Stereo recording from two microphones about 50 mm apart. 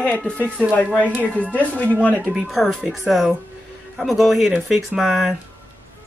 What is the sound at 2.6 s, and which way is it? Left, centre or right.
Speech, centre.